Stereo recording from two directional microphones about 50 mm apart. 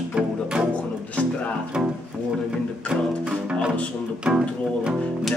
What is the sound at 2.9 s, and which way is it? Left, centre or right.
Music, centre.